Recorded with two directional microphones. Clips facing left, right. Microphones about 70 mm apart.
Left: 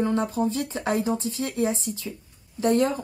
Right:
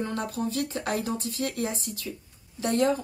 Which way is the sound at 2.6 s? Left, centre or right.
Left.